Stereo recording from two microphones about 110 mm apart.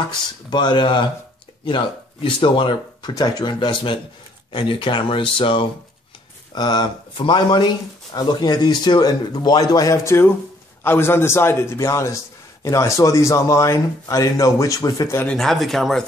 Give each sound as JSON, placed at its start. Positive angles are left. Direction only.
{"t": 0.5, "sound": "speech", "side_deg": 45}
{"t": 2.2, "sound": "speech", "side_deg": 50}
{"t": 6.5, "sound": "a man's voice", "side_deg": 40}
{"t": 15.2, "sound": "speech", "side_deg": 5}